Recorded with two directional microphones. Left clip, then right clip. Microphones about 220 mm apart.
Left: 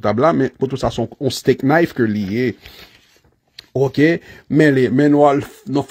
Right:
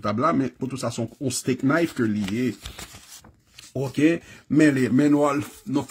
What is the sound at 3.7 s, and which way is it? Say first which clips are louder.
Speech: left 7 dB; 25° left (ahead or behind).